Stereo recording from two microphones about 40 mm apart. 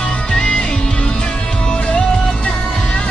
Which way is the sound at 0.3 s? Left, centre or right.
Left.